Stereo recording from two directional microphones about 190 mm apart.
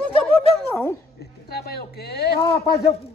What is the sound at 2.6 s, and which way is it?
Speech, 20° left (ahead or behind).